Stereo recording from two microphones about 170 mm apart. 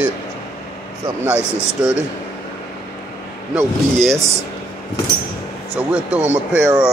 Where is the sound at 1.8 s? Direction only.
5° right (ahead or behind).